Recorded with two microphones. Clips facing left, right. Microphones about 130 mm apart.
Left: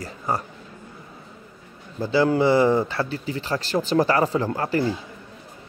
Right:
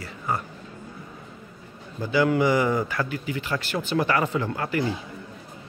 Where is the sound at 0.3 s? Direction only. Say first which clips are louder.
Left 2 dB; 35° left (ahead or behind).